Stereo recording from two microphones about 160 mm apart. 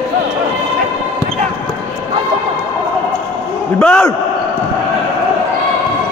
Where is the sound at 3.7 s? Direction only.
10° left (ahead or behind).